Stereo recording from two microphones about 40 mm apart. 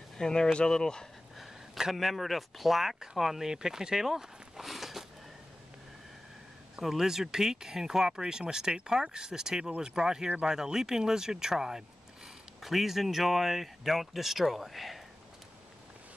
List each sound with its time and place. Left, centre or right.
0.2 s speech: centre
1.8 s speech: centre
6.8 s speech: centre